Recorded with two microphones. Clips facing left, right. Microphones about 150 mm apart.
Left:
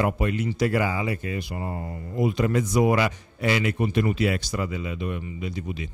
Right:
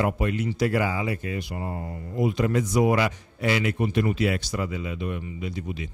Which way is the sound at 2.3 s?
Centre (ahead or behind).